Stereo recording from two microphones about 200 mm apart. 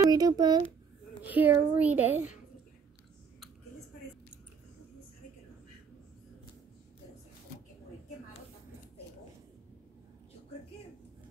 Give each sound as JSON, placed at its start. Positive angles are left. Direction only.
{"t": 0.0, "sound": "a child's voice", "side_deg": -20}
{"t": 1.2, "sound": "speech", "side_deg": -10}